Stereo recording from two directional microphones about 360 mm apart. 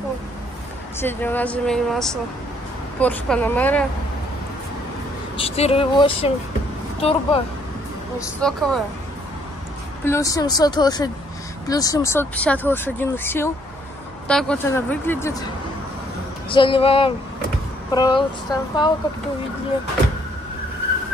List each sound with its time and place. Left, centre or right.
0.9 s speech: centre
5.4 s speech: centre
8.4 s speech: centre
10.0 s speech: centre
16.4 s speech: centre